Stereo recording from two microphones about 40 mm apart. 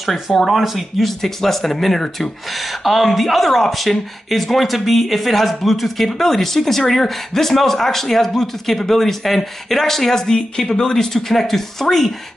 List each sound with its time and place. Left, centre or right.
0.5 s speech: centre